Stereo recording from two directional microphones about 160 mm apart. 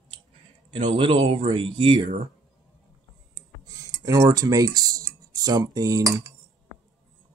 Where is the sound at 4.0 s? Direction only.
20° right (ahead or behind).